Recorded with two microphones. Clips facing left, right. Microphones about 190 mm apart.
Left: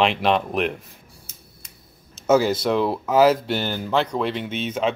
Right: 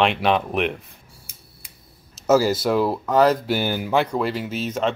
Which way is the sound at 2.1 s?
5° right (ahead or behind).